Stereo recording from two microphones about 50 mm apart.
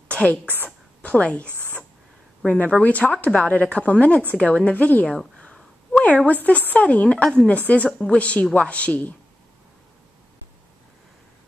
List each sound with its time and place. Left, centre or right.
0.1 s a sound: left
1.0 s a woman's voice: left
5.0 s a woman's voice: centre
6.2 s a woman's voice: left